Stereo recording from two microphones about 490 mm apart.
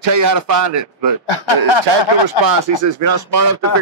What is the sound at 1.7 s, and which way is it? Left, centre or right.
Speech, left.